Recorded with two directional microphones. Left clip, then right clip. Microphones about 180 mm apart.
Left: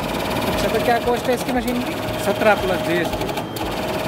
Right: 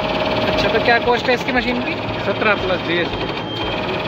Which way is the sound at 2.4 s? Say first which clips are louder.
Left 1 dB; 65° left (ahead or behind).